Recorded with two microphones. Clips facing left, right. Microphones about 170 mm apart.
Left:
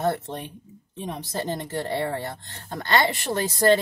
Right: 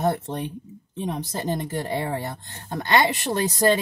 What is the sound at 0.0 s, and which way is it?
Speech, 15° right (ahead or behind).